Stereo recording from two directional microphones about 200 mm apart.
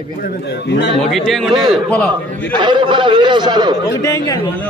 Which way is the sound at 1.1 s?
Centre (ahead or behind).